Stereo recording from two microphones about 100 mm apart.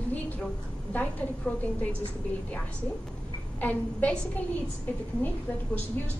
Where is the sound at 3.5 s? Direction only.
15° left (ahead or behind).